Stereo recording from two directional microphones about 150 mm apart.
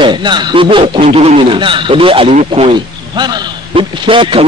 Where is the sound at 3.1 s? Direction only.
30° right (ahead or behind).